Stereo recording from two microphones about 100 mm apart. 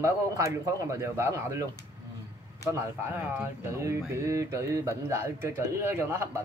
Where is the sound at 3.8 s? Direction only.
30° right (ahead or behind).